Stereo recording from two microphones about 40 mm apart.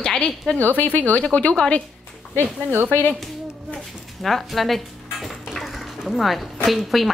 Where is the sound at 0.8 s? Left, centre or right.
Left.